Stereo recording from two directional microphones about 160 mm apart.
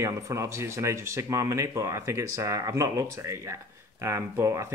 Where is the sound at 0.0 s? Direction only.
20° right (ahead or behind).